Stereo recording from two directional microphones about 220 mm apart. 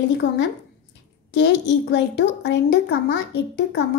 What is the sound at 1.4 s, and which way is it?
Speech, 50° left (ahead or behind).